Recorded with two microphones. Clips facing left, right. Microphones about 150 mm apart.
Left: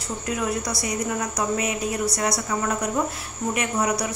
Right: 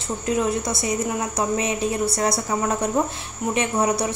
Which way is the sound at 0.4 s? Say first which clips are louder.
Right 2 dB; 25° right (ahead or behind).